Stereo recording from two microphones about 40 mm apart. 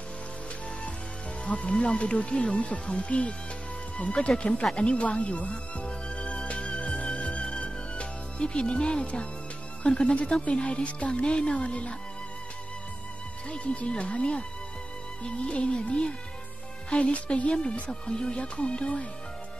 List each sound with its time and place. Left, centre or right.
1.4 s speech: left
4.7 s music: left
9.8 s speech: left
13.5 s speech: left